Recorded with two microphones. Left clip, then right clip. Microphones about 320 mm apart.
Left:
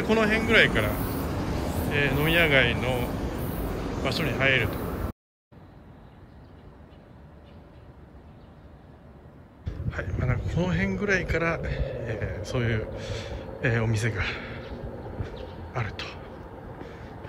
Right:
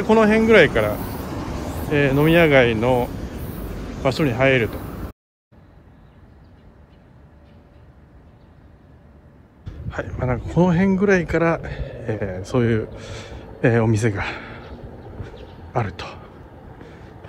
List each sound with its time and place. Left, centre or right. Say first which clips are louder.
0.0 s speech: right 8 dB; centre
1.0 s vehicle: right 1 dB; right
1.9 s speech: right 8 dB; centre
9.7 s speech: right 5 dB; centre
15.7 s speech: right 9 dB; centre
16.8 s vehicle: even; centre